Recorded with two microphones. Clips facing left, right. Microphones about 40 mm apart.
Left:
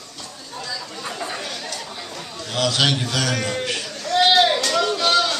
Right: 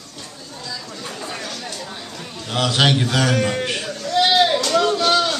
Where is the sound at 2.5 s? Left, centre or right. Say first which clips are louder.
Right 2 dB; right.